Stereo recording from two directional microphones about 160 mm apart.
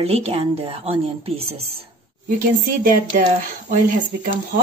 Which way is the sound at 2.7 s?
60° right (ahead or behind).